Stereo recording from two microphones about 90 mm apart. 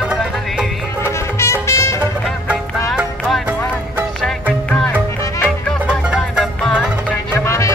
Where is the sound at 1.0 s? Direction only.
30° left (ahead or behind).